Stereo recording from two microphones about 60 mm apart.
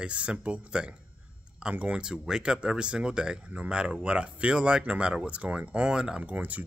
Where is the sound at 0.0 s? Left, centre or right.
Centre.